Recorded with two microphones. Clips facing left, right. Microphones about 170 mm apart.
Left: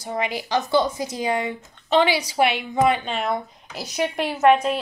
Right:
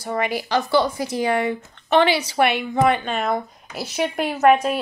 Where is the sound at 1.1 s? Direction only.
60° right (ahead or behind).